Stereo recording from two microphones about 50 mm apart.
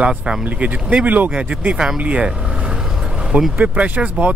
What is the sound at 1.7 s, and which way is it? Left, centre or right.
Speech, centre.